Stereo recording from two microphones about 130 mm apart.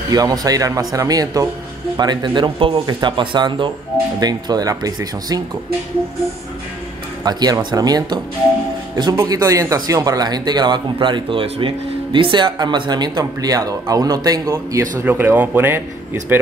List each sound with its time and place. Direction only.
0.1 s speech: 30° right (ahead or behind)
7.2 s speech: 30° right (ahead or behind)
9.2 s speech: 25° right (ahead or behind)